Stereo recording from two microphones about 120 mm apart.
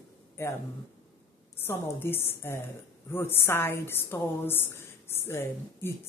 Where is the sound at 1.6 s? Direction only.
20° left (ahead or behind).